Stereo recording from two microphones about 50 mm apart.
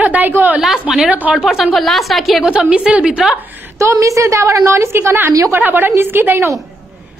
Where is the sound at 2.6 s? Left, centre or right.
Right.